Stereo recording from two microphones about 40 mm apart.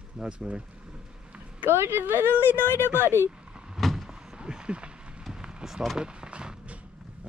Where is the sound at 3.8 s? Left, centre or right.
Centre.